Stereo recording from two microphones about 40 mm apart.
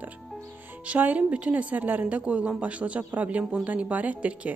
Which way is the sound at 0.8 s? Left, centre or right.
Right.